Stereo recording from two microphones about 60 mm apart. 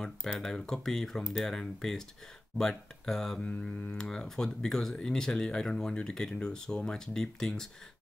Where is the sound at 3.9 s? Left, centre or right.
Centre.